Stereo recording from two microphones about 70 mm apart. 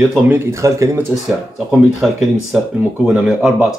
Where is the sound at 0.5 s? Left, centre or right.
Right.